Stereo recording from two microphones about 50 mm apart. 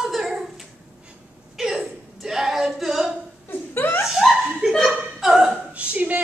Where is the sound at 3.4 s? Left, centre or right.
Left.